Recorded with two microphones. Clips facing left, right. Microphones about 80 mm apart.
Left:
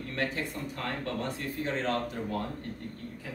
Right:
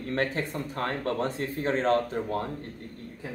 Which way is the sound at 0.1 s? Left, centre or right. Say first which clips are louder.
Right 5 dB; right.